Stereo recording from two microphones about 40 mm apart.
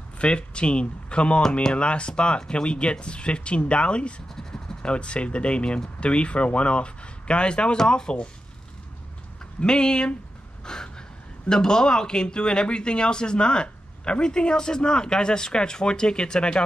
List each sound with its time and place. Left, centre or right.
0.2 s speech: left
7.7 s speech: centre
9.6 s speech: centre